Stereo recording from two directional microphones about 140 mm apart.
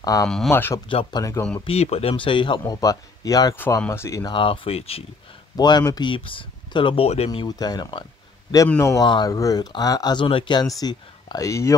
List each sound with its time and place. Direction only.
0.0 s speech: 25° left (ahead or behind)
0.8 s speech: 35° left (ahead or behind)
1.2 s speech: 25° left (ahead or behind)
1.6 s speech: 45° left (ahead or behind)
2.6 s speech: 25° left (ahead or behind)
3.5 s speech: 15° left (ahead or behind)
4.3 s speech: 40° left (ahead or behind)
5.6 s speech: 30° left (ahead or behind); by 7.2 s 45° left (ahead or behind)
7.2 s speech: 30° left (ahead or behind)
8.6 s speech: 20° left (ahead or behind)
9.0 s speech: 30° left (ahead or behind)